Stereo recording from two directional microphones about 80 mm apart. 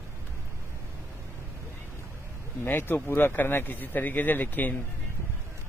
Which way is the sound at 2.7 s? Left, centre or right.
Left.